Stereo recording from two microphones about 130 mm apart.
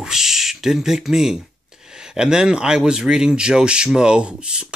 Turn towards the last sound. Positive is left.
turn(degrees=-5)  # may be behind; listen again after turning